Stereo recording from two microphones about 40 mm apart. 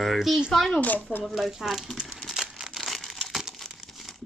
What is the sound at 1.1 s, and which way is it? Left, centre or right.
Speech, left.